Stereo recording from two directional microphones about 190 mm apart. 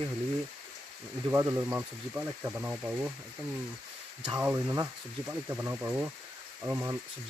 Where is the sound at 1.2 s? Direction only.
15° right (ahead or behind).